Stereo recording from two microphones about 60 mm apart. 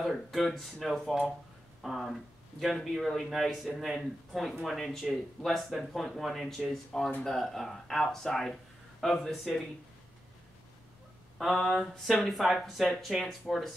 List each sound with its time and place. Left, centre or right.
0.0 s speech: centre
2.0 s speech: centre
11.3 s speech: centre